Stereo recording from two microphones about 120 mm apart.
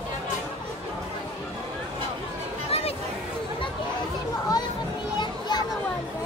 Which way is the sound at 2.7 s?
55° left (ahead or behind).